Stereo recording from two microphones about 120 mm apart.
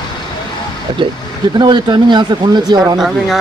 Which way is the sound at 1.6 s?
40° right (ahead or behind).